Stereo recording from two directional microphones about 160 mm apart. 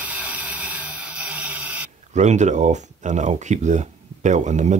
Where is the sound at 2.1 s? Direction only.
45° right (ahead or behind).